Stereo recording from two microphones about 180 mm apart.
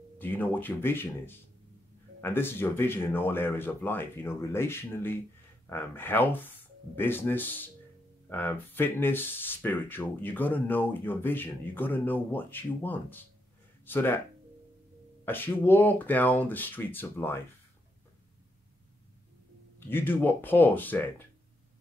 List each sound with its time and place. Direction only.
0.2 s speech: 10° left (ahead or behind)
15.2 s speech: 10° left (ahead or behind)
19.9 s speech: 10° left (ahead or behind)